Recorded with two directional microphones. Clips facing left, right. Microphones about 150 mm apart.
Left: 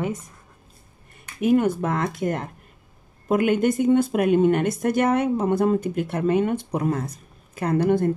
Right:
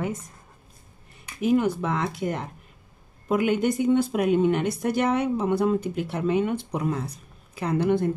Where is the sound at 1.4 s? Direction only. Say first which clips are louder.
Left 3 dB; 55° left (ahead or behind).